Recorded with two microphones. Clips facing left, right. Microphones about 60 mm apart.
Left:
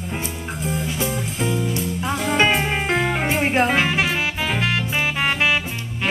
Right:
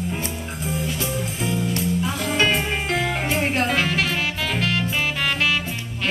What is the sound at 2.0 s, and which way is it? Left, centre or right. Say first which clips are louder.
Music: left 5 dB; centre.